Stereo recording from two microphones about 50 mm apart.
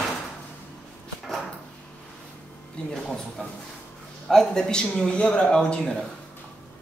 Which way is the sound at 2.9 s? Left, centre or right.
Centre.